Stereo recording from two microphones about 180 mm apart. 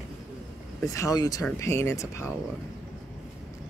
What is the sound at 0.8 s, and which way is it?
Speech, 20° left (ahead or behind).